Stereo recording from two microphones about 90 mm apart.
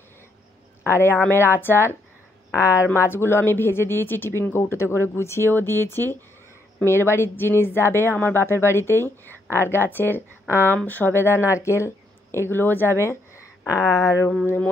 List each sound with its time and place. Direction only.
0.8 s speech: 25° left (ahead or behind)
2.5 s speech: 35° left (ahead or behind)
14.4 s speech: 20° left (ahead or behind)